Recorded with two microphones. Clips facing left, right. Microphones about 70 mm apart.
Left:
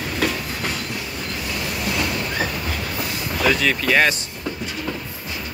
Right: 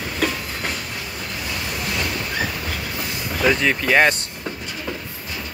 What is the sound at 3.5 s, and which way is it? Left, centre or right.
Speech, right.